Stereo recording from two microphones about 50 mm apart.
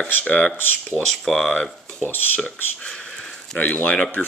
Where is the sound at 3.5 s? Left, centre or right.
Left.